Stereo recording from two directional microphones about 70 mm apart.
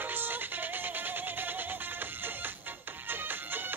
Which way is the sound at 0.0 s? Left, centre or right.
Right.